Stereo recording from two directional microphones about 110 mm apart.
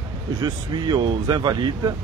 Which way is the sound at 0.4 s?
45° right (ahead or behind).